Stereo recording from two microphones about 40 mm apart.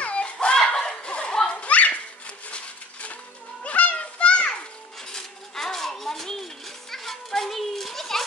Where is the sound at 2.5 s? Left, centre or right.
Left.